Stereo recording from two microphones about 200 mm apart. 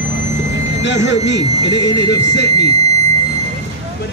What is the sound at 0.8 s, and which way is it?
Speech, 65° left (ahead or behind).